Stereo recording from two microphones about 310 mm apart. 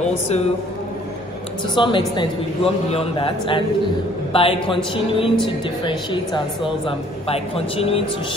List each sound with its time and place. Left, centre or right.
1.8 s a woman's voice: centre